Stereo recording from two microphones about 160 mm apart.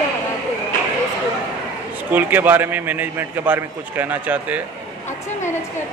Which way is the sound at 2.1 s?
10° right (ahead or behind).